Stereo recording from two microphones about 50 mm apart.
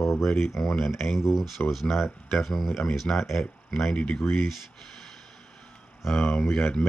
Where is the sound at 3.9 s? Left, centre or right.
Centre.